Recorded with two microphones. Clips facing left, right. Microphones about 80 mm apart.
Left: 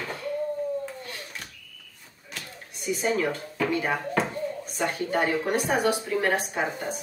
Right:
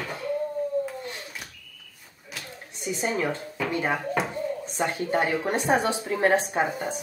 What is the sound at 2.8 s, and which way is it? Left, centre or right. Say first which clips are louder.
Speech: left 1 dB; right.